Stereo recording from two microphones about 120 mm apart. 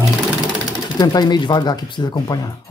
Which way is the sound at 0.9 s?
35° left (ahead or behind).